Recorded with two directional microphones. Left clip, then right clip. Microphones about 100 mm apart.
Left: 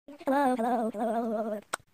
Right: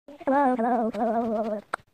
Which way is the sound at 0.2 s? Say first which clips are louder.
Right 4 dB; 30° left (ahead or behind).